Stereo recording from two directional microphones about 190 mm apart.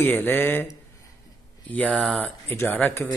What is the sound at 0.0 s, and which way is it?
Speech, 10° left (ahead or behind).